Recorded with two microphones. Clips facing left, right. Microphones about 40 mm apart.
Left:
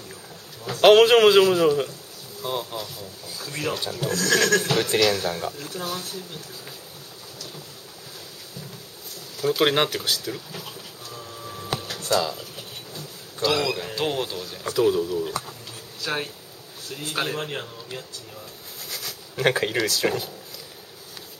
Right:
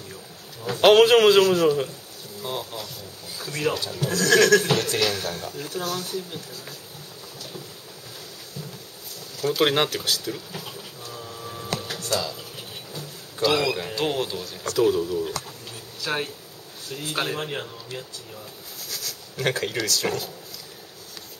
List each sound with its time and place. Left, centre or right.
0.7 s speech: centre
4.7 s speech: centre
5.6 s speech: centre
9.4 s speech: centre
11.1 s a sound: centre
12.0 s speech: centre
12.5 s speech: centre
18.9 s speech: centre